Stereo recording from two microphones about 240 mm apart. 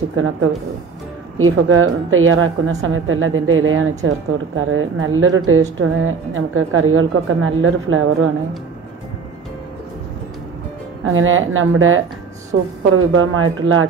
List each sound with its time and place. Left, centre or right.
0.1 s a woman's voice: right
11.1 s a woman's voice: right